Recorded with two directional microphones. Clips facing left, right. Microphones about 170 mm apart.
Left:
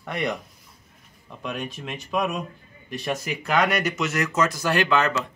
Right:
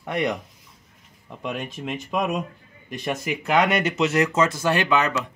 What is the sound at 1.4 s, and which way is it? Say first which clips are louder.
Speech: right 2 dB; 20° right (ahead or behind).